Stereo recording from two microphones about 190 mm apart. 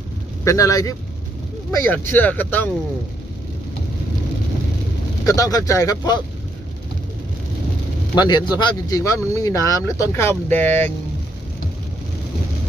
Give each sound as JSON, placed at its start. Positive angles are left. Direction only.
{"t": 0.4, "sound": "speech", "side_deg": 15}
{"t": 5.2, "sound": "speech", "side_deg": 20}
{"t": 8.1, "sound": "speech", "side_deg": 20}